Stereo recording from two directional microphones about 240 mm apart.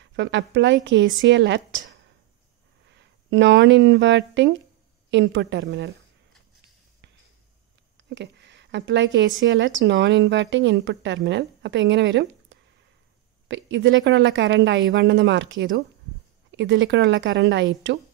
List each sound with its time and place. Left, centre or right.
0.0 s speech: right
8.0 s a sound: right
9.4 s speech: right